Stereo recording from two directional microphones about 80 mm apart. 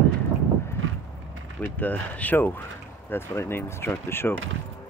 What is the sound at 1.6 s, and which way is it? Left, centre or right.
Speech, left.